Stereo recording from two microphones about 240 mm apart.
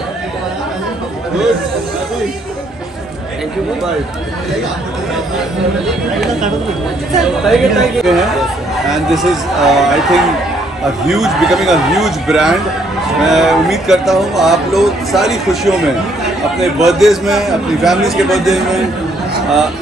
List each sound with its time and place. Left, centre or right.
7.2 s speech: centre